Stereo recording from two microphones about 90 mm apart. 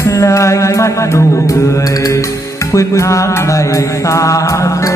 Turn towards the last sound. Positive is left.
turn(degrees=35)  # may be behind; listen again after turning